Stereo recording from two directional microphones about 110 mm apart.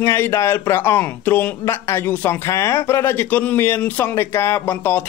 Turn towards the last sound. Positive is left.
turn(degrees=20)  # may be behind; listen again after turning